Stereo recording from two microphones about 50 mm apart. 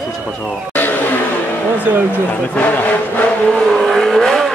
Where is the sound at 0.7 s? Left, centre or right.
Left.